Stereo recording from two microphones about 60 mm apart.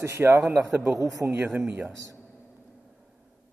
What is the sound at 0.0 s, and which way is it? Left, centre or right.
Speech, right.